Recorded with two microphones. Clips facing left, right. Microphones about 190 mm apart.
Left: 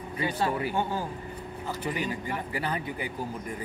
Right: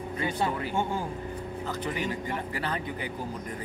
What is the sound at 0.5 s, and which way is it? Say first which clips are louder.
Speech: left 1 dB; 10° left (ahead or behind).